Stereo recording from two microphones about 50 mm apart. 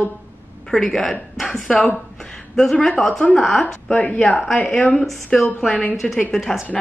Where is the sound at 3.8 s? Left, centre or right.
Left.